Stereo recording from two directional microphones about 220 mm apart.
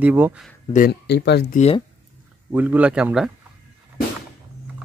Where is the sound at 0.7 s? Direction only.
45° left (ahead or behind).